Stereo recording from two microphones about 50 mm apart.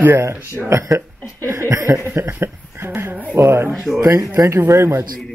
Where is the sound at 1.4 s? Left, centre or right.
Right.